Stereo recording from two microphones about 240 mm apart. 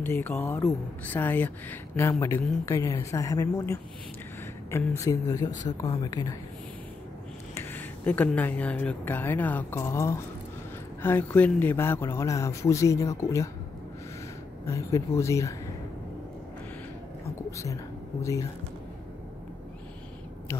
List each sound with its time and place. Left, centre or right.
0.0 s speech: centre
5.5 s speech: left
5.8 s speech: centre
7.5 s speech: centre
14.7 s speech: centre
17.5 s speech: centre